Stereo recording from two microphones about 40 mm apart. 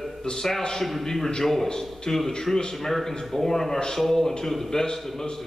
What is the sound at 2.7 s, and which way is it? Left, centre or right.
A man's voice, centre.